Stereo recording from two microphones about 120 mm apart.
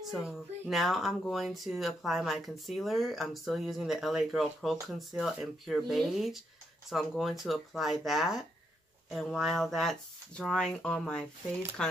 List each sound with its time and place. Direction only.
0.0 s speech: centre (ahead or behind)